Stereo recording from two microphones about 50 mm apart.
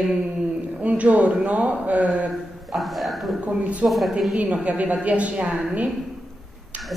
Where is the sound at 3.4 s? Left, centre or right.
Right.